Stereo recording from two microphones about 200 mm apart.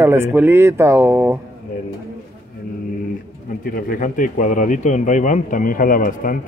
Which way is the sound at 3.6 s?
45° left (ahead or behind).